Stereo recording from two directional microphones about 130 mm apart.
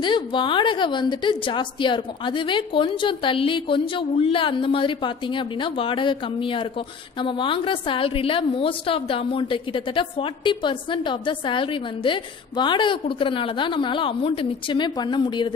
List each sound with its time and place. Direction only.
0.0 s a woman's voice: 35° left (ahead or behind)